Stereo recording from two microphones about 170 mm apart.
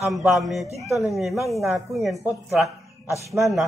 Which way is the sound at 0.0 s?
Centre (ahead or behind).